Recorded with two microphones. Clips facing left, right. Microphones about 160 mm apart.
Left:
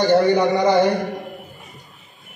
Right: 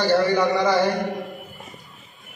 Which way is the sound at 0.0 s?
20° left (ahead or behind).